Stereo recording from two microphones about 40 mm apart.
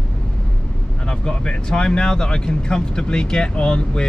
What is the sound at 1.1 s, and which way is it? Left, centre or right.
Speech, left.